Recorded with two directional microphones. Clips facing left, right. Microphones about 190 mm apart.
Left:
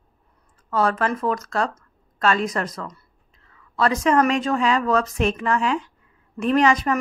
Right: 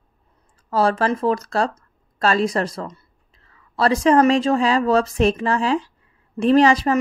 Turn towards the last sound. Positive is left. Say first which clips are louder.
# right 4 dB
turn(degrees=-30)  # may be behind; listen again after turning